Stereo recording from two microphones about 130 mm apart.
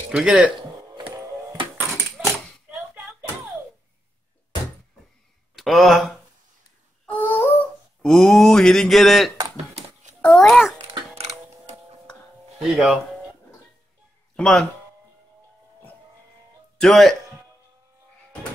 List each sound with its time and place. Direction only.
0.1 s speech: 5° right (ahead or behind)
0.6 s a sound: 40° right (ahead or behind)
2.2 s a sound: 5° right (ahead or behind)
5.6 s speech: centre (ahead or behind)
7.1 s a sound: 15° left (ahead or behind)
8.0 s mantra: 5° left (ahead or behind)
10.4 s speech: centre (ahead or behind)
10.8 s tick-tock: 55° right (ahead or behind)
12.7 s speech: centre (ahead or behind)
14.3 s speech: 5° left (ahead or behind)
16.8 s speech: centre (ahead or behind)